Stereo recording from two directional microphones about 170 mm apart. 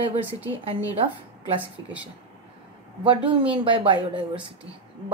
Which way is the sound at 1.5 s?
10° right (ahead or behind).